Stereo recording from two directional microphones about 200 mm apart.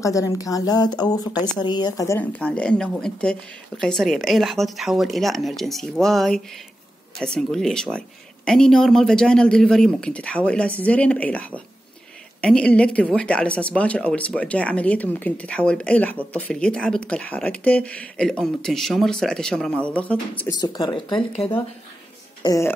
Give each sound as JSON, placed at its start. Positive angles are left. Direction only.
{"t": 0.0, "sound": "speech", "side_deg": 15}
{"t": 20.6, "sound": "speech", "side_deg": 20}